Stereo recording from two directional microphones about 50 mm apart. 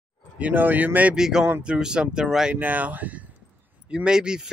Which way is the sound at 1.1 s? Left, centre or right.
Centre.